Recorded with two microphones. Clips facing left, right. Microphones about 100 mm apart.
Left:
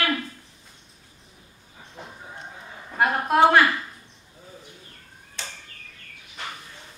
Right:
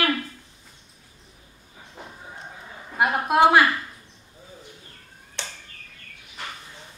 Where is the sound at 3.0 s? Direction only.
10° right (ahead or behind).